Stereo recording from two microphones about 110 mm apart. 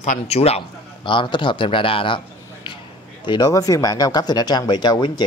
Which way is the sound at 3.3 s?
35° left (ahead or behind).